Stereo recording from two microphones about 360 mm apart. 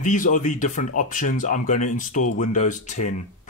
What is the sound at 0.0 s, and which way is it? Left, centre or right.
Speech, left.